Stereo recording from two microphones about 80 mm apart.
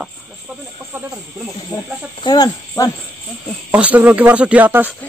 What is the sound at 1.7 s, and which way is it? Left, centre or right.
Speech, left.